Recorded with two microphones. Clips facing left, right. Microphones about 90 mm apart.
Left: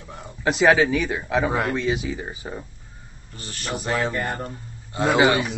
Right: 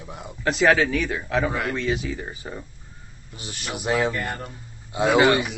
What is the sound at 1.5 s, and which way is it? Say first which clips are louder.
Speech: left 3 dB; 35° left (ahead or behind).